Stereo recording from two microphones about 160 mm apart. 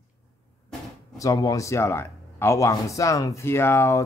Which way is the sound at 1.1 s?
20° left (ahead or behind).